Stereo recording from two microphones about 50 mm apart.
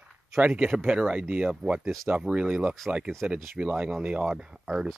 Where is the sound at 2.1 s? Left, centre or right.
Right.